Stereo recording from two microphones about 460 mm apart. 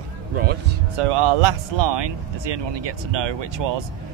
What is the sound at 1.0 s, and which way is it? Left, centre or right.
Speech, right.